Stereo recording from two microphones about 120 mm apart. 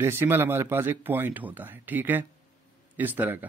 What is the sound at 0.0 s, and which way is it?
A man's voice, 20° right (ahead or behind).